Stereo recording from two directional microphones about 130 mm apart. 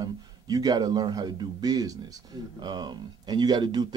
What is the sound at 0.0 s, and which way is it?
Speech, 30° right (ahead or behind).